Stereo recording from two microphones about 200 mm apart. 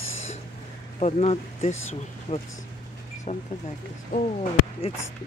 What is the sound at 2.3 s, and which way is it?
Speech, 35° left (ahead or behind).